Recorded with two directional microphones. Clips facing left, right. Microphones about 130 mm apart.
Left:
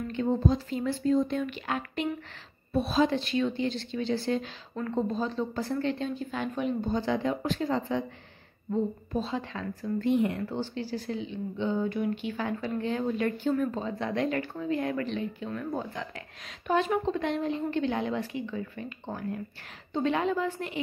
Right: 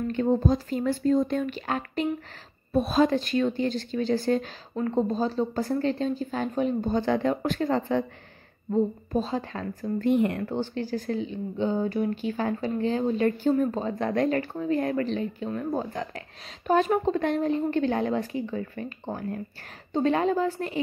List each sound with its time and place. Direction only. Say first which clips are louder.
0.1 s a woman's voice: right 2 dB; 45° right (ahead or behind)
6.9 s speech: right 4 dB; 55° right (ahead or behind)
8.7 s a woman's voice: right 4 dB; 35° right (ahead or behind)